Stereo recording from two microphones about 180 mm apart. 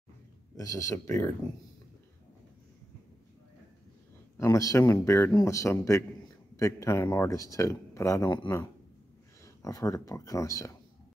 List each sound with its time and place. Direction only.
0.6 s speech: 20° left (ahead or behind)
4.4 s speech: 15° left (ahead or behind)